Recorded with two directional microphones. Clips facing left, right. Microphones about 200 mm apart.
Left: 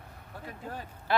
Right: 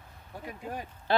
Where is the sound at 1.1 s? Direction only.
30° right (ahead or behind).